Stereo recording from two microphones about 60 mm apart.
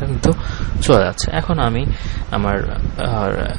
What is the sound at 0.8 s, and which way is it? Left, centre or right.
Speech, centre.